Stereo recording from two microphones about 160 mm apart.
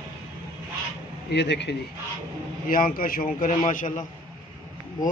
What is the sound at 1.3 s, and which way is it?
Speech, 90° left.